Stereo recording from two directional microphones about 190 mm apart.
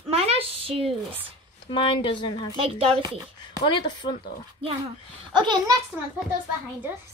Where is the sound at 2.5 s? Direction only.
30° right (ahead or behind).